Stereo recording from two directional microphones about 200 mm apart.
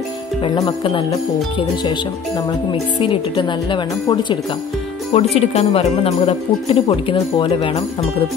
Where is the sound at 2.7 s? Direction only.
25° left (ahead or behind).